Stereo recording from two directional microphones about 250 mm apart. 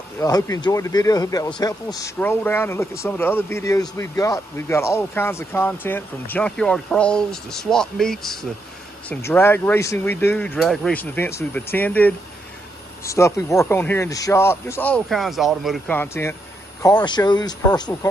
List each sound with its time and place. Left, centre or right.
0.2 s speech: centre